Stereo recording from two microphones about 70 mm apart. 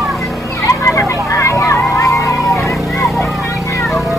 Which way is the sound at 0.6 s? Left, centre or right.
Left.